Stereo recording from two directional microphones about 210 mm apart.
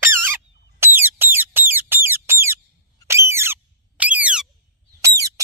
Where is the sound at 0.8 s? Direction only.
10° right (ahead or behind).